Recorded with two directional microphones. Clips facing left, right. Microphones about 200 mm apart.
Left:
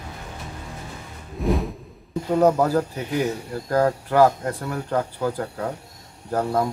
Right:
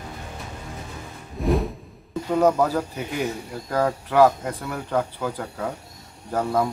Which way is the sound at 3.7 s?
10° left (ahead or behind).